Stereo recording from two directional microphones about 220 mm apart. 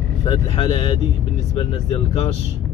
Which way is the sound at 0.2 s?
25° left (ahead or behind).